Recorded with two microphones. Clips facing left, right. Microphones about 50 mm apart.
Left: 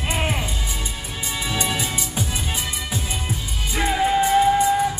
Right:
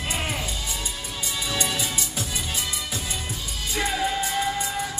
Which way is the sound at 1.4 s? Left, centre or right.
Left.